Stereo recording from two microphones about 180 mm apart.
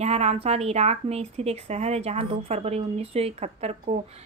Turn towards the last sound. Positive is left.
turn(degrees=-35)  # may be behind; listen again after turning